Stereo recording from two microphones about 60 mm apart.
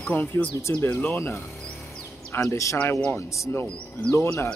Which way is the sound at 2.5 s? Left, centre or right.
Left.